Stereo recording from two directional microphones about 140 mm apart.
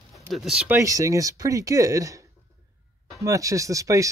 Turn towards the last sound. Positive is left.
turn(degrees=-25)  # may be behind; listen again after turning